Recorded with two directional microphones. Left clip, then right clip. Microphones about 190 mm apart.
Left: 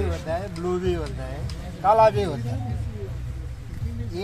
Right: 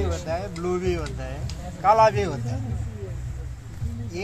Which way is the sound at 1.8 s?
10° right (ahead or behind).